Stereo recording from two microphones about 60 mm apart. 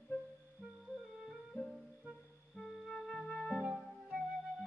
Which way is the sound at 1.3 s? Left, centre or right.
Centre.